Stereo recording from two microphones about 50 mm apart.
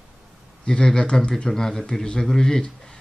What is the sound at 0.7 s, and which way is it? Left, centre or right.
Speech, centre.